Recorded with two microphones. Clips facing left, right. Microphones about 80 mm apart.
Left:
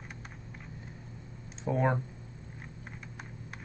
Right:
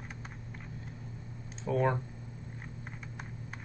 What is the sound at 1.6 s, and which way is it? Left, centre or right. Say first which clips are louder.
Speech: even; centre.